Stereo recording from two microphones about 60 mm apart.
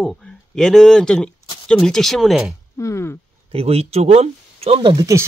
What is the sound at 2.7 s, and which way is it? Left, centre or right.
Speech, left.